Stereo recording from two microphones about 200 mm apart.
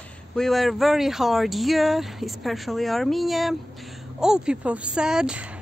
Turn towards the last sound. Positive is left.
turn(degrees=-5)  # may be behind; listen again after turning